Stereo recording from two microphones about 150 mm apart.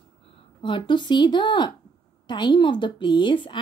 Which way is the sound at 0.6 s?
35° left (ahead or behind).